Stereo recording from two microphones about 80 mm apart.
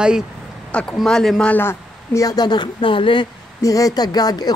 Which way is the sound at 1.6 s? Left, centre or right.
Left.